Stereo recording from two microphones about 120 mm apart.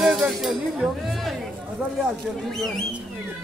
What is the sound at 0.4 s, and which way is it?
Speech, centre (ahead or behind).